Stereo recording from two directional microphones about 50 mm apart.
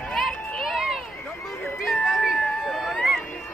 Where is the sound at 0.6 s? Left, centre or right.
Centre.